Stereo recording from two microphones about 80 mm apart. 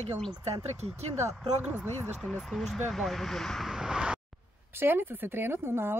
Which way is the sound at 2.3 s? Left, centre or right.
Centre.